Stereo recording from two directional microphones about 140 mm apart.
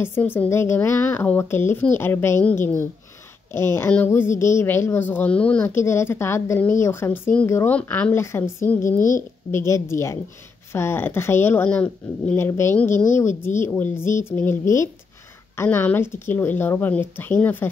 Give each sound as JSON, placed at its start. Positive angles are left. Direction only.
{"t": 0.0, "sound": "a woman's voice", "side_deg": 15}